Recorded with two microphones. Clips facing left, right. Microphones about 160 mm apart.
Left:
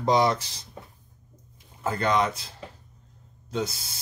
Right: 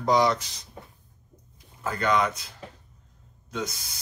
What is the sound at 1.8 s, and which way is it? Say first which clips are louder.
Speech: left 1 dB; 25° left (ahead or behind).